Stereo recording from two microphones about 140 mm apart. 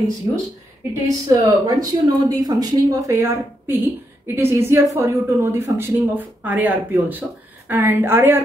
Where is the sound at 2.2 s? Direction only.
30° right (ahead or behind).